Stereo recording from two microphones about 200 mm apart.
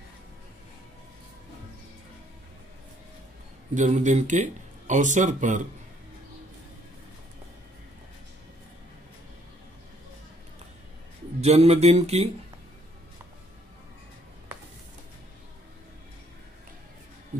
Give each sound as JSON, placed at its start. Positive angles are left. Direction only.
{"t": 3.7, "sound": "speech", "side_deg": -35}
{"t": 11.4, "sound": "speech", "side_deg": -30}